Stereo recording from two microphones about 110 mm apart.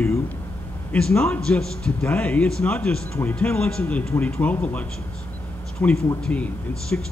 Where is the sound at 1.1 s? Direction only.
15° left (ahead or behind).